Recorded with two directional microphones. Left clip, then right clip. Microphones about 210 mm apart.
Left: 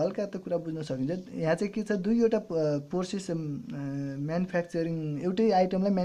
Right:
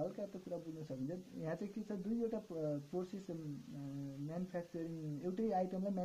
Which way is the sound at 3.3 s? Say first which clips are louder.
Left 13 dB; 40° left (ahead or behind).